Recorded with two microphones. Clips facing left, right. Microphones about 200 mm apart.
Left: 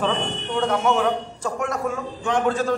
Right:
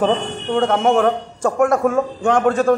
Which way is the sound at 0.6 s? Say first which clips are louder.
Right 5 dB; 50° right (ahead or behind).